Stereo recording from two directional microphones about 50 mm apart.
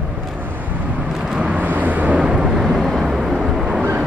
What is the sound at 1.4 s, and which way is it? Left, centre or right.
Vehicle, right.